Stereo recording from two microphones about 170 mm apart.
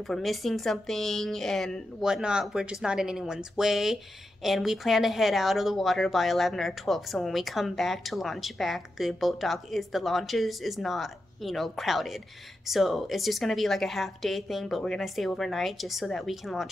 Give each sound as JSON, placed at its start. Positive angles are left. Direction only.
{"t": 0.1, "sound": "a woman's voice", "side_deg": 0}